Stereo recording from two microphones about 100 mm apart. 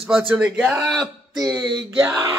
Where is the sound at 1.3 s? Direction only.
40° right (ahead or behind).